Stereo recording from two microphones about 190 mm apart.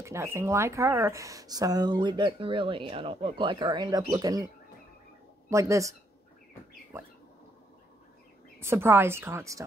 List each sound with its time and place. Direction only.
0.0 s speech: 15° right (ahead or behind)
5.5 s a woman's voice: 15° right (ahead or behind)
8.5 s a woman's voice: 15° right (ahead or behind)